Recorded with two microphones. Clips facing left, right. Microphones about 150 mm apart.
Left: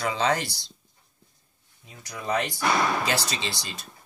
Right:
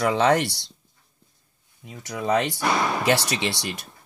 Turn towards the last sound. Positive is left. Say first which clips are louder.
# right 6 dB
turn(degrees=-75)  # may be behind; listen again after turning